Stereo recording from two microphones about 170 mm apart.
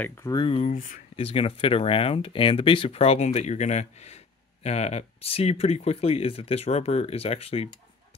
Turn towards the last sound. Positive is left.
turn(degrees=35)  # may be behind; listen again after turning